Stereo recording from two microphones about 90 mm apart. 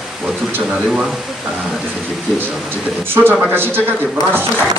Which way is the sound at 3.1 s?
25° right (ahead or behind).